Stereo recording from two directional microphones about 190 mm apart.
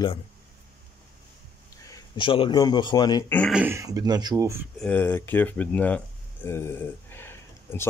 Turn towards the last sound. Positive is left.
turn(degrees=10)  # may be behind; listen again after turning